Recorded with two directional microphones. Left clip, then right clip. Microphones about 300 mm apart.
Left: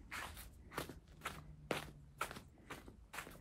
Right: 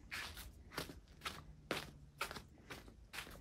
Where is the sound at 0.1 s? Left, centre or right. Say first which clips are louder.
Right 1 dB; centre.